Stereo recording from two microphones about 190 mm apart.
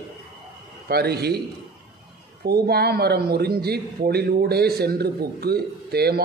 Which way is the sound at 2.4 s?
55° right (ahead or behind).